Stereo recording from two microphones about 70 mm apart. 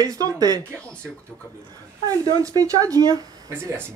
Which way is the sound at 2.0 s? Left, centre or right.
Right.